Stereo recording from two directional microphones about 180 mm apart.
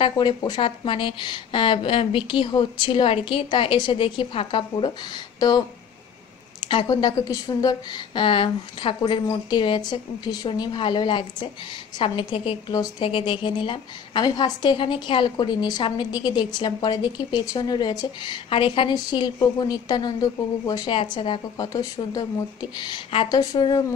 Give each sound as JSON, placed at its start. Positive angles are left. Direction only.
{"t": 0.0, "sound": "a woman's voice", "side_deg": 25}
{"t": 6.7, "sound": "a woman's voice", "side_deg": 25}